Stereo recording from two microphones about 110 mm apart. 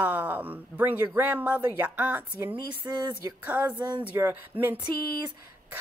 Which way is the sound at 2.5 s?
45° right (ahead or behind).